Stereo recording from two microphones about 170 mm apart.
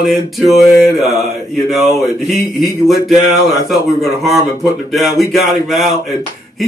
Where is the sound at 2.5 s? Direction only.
Centre (ahead or behind).